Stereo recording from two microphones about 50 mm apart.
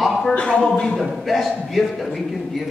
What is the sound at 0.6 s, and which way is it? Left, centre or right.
Speech, centre.